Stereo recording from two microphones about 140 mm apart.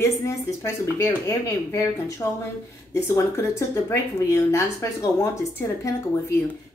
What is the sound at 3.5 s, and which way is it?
A woman's voice, 20° left (ahead or behind).